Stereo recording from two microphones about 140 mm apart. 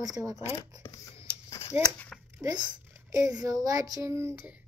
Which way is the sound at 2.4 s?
30° right (ahead or behind).